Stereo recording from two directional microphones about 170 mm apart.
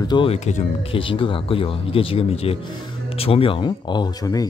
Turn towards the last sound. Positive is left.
turn(degrees=20)  # may be behind; listen again after turning